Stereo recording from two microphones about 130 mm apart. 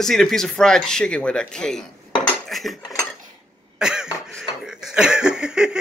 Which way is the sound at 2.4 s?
Centre (ahead or behind).